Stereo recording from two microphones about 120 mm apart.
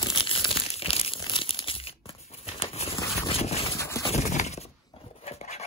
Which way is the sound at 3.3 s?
55° left (ahead or behind).